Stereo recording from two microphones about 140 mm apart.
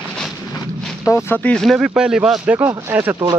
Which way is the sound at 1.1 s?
20° left (ahead or behind).